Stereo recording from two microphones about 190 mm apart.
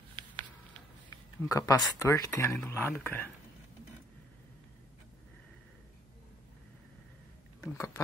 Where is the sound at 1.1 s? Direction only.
15° left (ahead or behind).